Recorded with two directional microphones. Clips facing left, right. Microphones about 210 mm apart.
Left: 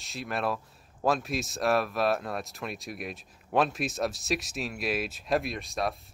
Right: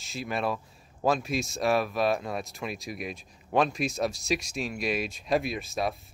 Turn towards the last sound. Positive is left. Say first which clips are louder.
# right 1 dB
turn(degrees=0)  # may be behind; listen again after turning